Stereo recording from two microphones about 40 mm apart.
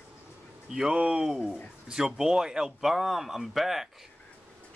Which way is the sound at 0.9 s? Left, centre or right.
Right.